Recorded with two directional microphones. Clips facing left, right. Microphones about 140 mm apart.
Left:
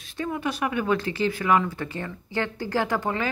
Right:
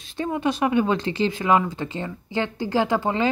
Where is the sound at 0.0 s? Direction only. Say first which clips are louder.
Right 4 dB; 30° right (ahead or behind).